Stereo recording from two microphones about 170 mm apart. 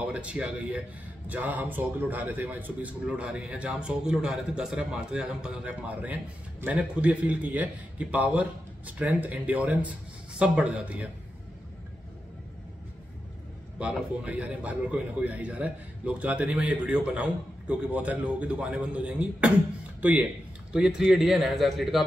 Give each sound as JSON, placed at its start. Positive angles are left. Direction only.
{"t": 0.1, "sound": "a man's voice", "side_deg": -5}
{"t": 13.7, "sound": "a man's voice", "side_deg": -5}